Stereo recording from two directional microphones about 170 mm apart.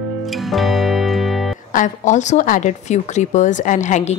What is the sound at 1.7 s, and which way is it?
Speech, 45° left (ahead or behind).